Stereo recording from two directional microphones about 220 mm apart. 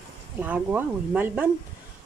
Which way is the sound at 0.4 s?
10° right (ahead or behind).